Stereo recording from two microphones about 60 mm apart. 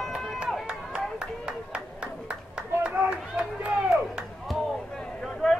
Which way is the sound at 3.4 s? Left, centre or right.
Centre.